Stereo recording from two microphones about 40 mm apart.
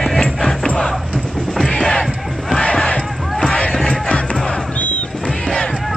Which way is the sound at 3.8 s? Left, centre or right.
Left.